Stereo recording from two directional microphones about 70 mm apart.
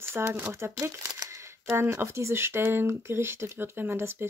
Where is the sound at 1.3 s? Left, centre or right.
Right.